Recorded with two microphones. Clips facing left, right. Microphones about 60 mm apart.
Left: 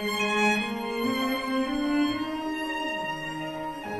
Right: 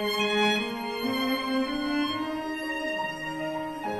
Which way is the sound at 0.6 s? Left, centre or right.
Centre.